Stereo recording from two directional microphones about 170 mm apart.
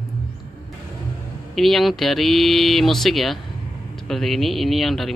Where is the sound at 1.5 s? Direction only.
Centre (ahead or behind).